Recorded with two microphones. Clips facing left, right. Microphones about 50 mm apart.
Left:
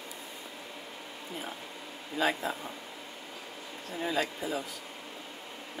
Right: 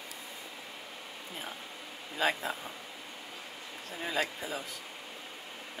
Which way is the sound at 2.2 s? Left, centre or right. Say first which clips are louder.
Left 1 dB; centre.